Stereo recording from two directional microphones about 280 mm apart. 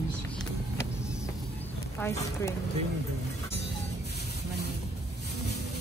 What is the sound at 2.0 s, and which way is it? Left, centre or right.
Speech, centre.